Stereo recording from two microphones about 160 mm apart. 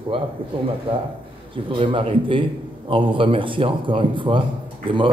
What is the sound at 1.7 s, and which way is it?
A man's voice, 30° right (ahead or behind).